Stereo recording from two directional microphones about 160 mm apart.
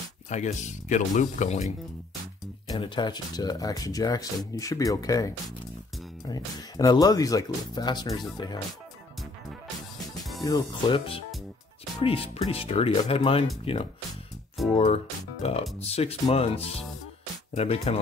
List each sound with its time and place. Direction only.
0.3 s speech: 45° left (ahead or behind)
2.7 s speech: 25° left (ahead or behind)
10.4 s speech: 25° left (ahead or behind)
12.0 s speech: 35° left (ahead or behind)
14.6 s speech: centre (ahead or behind)
15.4 s speech: 40° left (ahead or behind)